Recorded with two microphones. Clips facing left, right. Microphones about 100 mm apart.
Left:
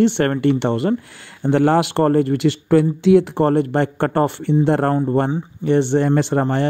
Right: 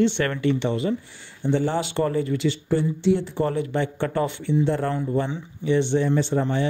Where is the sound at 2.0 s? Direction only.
60° left (ahead or behind).